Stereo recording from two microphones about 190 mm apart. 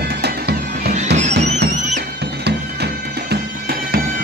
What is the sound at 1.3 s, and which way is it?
Music, 65° right (ahead or behind).